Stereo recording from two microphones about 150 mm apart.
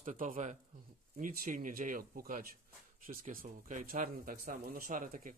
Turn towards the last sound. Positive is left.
turn(degrees=-60)  # may be behind; listen again after turning